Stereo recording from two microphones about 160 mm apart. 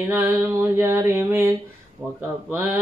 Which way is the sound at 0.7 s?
15° right (ahead or behind).